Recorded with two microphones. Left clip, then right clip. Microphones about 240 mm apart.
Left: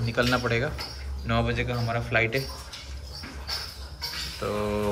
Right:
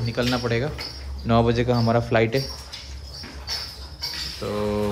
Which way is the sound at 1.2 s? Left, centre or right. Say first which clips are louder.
Right 7 dB; centre.